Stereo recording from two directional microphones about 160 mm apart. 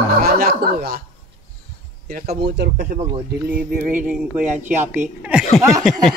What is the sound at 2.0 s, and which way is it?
Speech, 70° right (ahead or behind).